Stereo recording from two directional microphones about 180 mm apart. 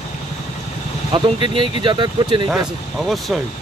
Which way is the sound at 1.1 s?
25° right (ahead or behind).